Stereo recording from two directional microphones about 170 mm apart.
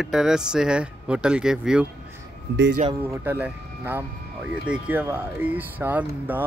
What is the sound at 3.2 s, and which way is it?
Speech, 10° right (ahead or behind).